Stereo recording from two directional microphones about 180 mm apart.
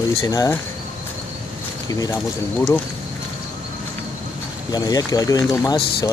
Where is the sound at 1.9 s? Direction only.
20° left (ahead or behind).